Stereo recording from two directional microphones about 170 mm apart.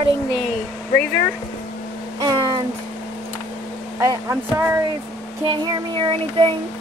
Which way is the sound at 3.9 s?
15° right (ahead or behind).